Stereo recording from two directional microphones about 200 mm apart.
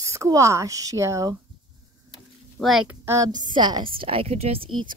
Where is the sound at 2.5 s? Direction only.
Centre (ahead or behind).